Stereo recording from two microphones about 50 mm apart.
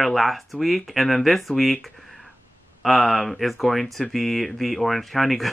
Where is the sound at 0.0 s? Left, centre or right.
Centre.